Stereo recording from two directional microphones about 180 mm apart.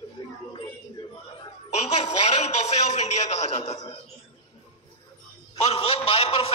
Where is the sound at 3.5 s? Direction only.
40° left (ahead or behind).